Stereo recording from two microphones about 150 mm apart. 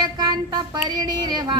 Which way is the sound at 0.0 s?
30° right (ahead or behind).